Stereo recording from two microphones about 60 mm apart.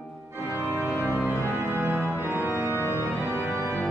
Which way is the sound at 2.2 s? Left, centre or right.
Right.